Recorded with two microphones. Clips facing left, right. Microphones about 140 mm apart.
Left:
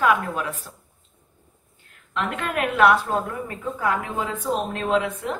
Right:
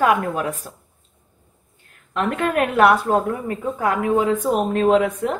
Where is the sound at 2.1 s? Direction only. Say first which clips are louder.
Right 6 dB; 45° right (ahead or behind).